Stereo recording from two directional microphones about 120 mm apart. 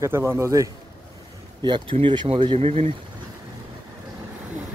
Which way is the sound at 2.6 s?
60° right (ahead or behind).